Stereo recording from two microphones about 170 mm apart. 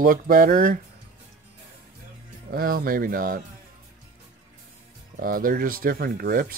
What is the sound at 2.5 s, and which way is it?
Speech, 60° right (ahead or behind).